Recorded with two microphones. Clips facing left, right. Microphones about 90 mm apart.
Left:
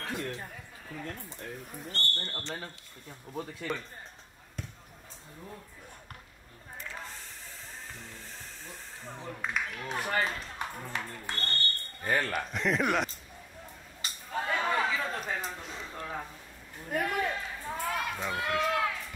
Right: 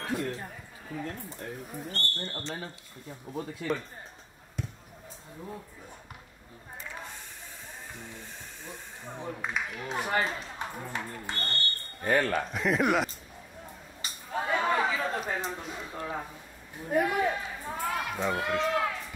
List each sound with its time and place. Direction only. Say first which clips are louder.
0.0 s speech: right 4 dB; 5° right (ahead or behind)
4.6 s basketball bounce: right 5 dB; 5° right (ahead or behind)
7.9 s music: right 2 dB; 15° right (ahead or behind)
8.6 s a man's voice: right 3 dB; 15° right (ahead or behind)
14.0 s a sound: right 1 dB; 5° right (ahead or behind)